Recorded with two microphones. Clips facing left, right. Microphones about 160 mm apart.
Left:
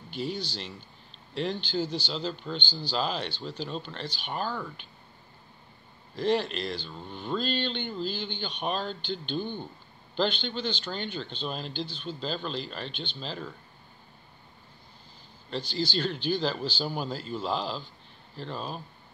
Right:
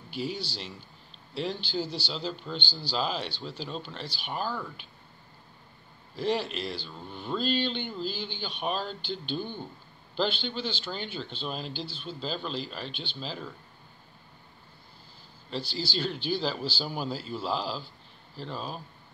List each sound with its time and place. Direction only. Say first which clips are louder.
0.1 s speech: left 1 dB; 5° right (ahead or behind)
3.3 s speech: left 2 dB; 45° left (ahead or behind)
3.6 s speech: left 2 dB; centre (ahead or behind)
6.1 s speech: left 2 dB; 5° right (ahead or behind)
15.7 s speech: left 3 dB; 5° right (ahead or behind)